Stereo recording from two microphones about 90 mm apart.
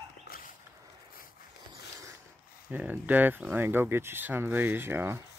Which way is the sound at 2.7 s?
20° right (ahead or behind).